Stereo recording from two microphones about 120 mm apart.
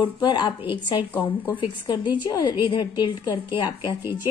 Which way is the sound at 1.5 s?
40° left (ahead or behind).